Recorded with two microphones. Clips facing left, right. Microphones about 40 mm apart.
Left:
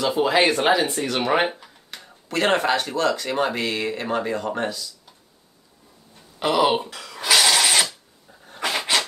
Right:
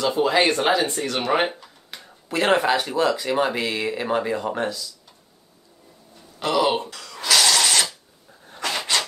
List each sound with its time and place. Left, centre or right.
0.0 s speech: centre
1.9 s speech: centre
6.4 s a sound: centre
8.5 s dog: centre